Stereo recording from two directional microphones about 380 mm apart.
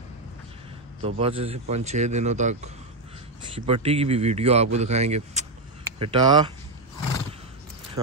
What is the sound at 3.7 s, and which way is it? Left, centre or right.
Speech, centre.